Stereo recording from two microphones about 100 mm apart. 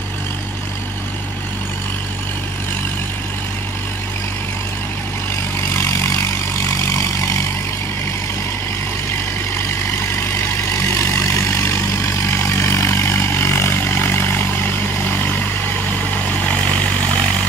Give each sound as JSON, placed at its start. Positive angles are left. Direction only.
{"t": 5.7, "sound": "vehicle", "side_deg": 25}
{"t": 10.0, "sound": "vehicle", "side_deg": 25}